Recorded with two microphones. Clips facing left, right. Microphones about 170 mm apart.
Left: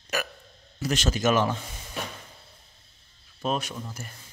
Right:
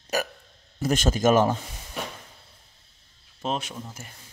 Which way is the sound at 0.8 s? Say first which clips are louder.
Right 3 dB; 50° right (ahead or behind).